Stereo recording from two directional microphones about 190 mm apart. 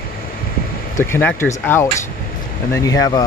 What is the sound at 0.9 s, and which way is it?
Speech, 10° left (ahead or behind).